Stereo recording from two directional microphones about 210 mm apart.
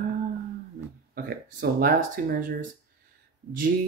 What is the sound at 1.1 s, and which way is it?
Speech, 45° right (ahead or behind).